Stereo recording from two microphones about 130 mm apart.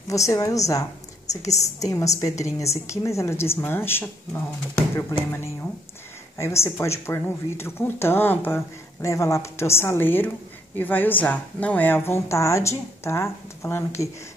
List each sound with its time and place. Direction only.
0.1 s speech: 25° left (ahead or behind)